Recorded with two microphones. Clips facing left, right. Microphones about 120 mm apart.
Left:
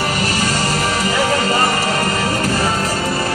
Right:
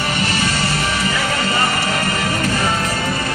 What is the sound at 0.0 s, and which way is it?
Music, 40° left (ahead or behind).